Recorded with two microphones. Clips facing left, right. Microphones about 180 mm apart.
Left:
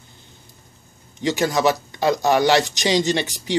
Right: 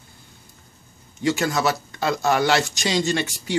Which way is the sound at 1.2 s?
20° left (ahead or behind).